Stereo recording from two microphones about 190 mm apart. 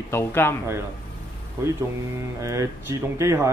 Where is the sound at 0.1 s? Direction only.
15° left (ahead or behind).